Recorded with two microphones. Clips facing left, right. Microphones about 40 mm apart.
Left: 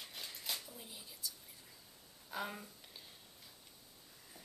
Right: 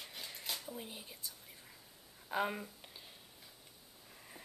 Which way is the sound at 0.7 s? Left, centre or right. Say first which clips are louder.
Right 6 dB; right.